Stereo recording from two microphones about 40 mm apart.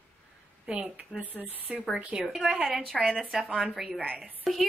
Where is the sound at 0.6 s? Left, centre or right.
Right.